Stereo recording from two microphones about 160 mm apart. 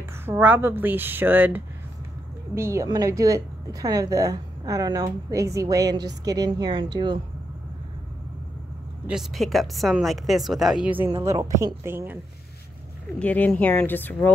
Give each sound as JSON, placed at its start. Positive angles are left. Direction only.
{"t": 0.2, "sound": "a woman's voice", "side_deg": -15}
{"t": 9.0, "sound": "speech", "side_deg": 0}
{"t": 11.2, "sound": "a woman's voice", "side_deg": -20}
{"t": 13.2, "sound": "speech", "side_deg": 10}